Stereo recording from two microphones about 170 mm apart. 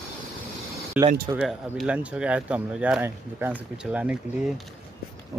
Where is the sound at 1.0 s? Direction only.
10° right (ahead or behind).